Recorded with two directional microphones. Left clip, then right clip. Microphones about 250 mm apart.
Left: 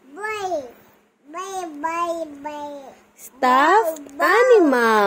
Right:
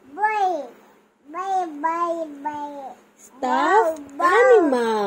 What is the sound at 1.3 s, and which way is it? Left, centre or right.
Child singing, left.